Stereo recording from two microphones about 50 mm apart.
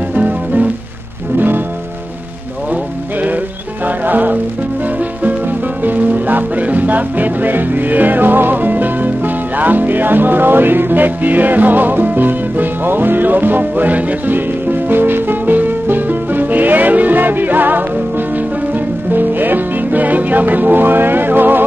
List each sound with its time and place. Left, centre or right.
0.1 s music: right
2.7 s music: right
5.9 s music: right
19.1 s music: right